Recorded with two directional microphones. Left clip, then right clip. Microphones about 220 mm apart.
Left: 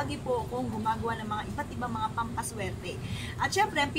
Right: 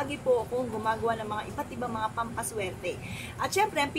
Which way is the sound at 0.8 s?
5° left (ahead or behind).